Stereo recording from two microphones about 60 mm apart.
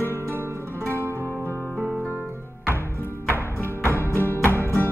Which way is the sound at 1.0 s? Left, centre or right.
Left.